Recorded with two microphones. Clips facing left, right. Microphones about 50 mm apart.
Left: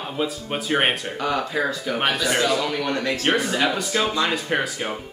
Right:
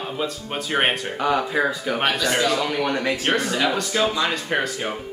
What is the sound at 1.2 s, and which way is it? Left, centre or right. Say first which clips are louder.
Speech: right 4 dB; centre.